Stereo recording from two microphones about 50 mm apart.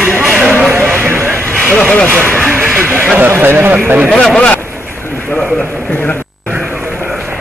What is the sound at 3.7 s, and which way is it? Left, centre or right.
Speech, right.